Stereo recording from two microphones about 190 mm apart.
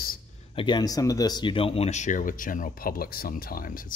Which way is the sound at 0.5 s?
25° left (ahead or behind).